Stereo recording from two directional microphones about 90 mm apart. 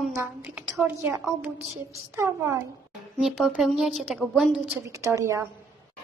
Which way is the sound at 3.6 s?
Centre (ahead or behind).